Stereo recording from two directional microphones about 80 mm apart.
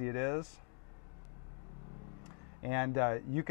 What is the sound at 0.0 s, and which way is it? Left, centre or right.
Speech, centre.